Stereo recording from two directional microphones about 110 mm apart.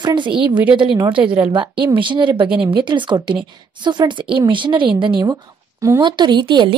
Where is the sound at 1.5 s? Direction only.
50° right (ahead or behind).